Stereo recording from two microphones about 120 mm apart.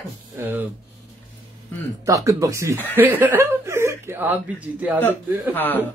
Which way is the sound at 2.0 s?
25° right (ahead or behind).